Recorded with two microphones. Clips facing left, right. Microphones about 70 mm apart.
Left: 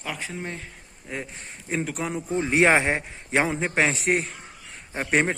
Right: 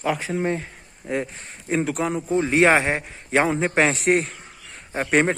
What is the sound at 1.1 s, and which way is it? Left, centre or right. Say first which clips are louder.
A man's voice: right 8 dB; centre.